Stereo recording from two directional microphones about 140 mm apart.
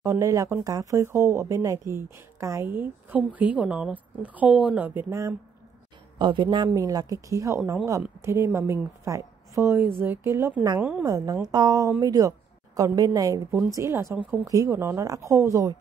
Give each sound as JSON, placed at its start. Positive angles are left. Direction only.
{"t": 0.0, "sound": "speech", "side_deg": -20}
{"t": 6.1, "sound": "a woman's voice", "side_deg": -35}
{"t": 10.8, "sound": "speech", "side_deg": -10}
{"t": 11.1, "sound": "a woman's voice", "side_deg": -25}